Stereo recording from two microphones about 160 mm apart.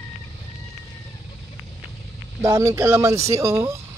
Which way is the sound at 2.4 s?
20° right (ahead or behind).